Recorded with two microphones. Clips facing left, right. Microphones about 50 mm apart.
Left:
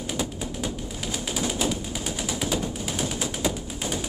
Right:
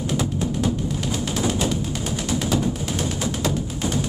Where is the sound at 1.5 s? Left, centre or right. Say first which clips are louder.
Right 4 dB; centre.